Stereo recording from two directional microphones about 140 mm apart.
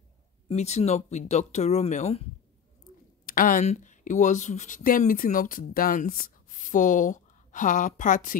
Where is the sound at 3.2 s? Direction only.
80° left.